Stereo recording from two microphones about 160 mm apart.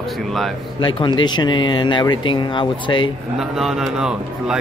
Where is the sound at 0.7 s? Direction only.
30° left (ahead or behind).